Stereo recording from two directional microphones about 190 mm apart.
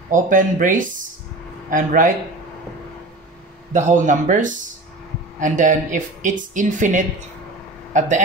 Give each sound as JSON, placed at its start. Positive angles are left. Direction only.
{"t": 0.1, "sound": "speech", "side_deg": -45}
{"t": 3.7, "sound": "speech", "side_deg": -40}